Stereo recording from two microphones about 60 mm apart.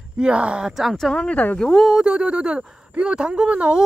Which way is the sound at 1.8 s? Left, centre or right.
Centre.